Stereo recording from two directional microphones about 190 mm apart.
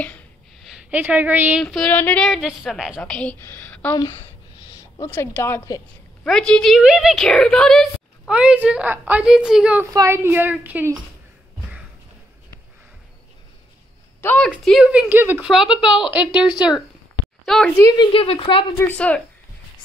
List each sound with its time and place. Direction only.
0.7 s a woman's voice: 5° right (ahead or behind)
14.2 s a woman's voice: 10° left (ahead or behind)
17.7 s a woman's voice: 20° left (ahead or behind)
18.8 s a woman's voice: 10° left (ahead or behind)